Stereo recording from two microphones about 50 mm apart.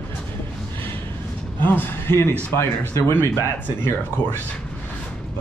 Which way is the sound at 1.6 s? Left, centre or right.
Left.